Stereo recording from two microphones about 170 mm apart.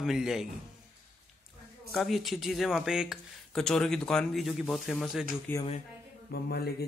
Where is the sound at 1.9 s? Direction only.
Centre (ahead or behind).